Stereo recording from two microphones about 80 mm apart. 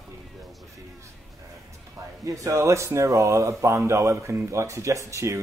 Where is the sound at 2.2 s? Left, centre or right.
Right.